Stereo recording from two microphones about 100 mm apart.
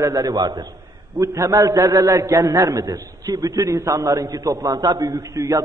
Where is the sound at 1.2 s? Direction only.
30° right (ahead or behind).